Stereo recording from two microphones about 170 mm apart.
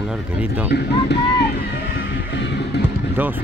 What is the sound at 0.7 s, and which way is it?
Speech, 70° left (ahead or behind).